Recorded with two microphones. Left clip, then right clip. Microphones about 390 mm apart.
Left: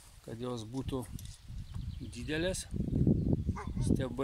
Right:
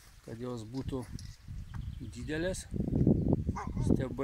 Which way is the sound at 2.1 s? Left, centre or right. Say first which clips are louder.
Even; centre.